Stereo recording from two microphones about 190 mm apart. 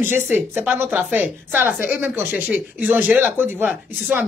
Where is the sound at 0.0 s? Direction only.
10° right (ahead or behind).